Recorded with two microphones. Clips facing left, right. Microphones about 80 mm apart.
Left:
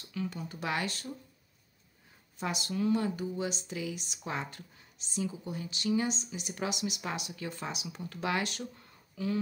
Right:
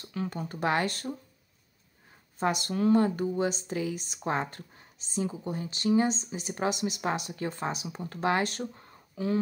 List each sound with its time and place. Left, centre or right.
0.0 s speech: right
2.3 s speech: right